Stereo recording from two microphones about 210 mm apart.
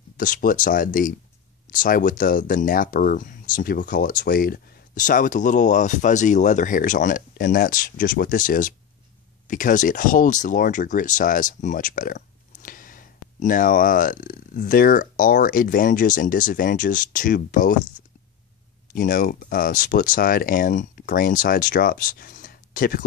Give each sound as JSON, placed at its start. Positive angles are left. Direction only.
{"t": 0.2, "sound": "speech", "side_deg": 40}
{"t": 18.9, "sound": "speech", "side_deg": 40}